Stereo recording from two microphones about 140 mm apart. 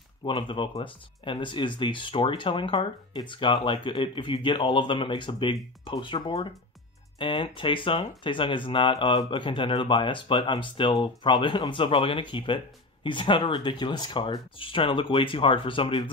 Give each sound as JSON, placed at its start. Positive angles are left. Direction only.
{"t": 0.2, "sound": "speech", "side_deg": 35}